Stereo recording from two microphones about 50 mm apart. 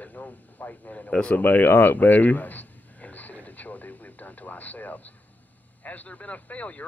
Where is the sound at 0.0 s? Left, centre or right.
Left.